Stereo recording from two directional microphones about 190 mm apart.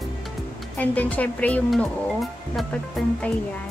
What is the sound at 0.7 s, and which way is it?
Speech, 10° left (ahead or behind).